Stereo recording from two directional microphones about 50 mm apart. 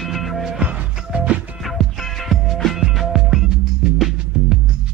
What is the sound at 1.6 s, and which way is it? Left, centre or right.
Music, centre.